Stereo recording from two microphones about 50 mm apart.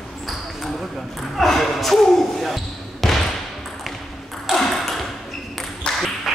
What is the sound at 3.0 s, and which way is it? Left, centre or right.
Basketball bounce, centre.